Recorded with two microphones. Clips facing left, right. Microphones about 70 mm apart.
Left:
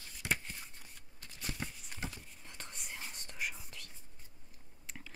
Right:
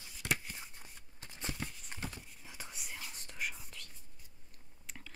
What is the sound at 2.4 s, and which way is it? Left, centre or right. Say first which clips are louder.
Whispering: left 1 dB; centre.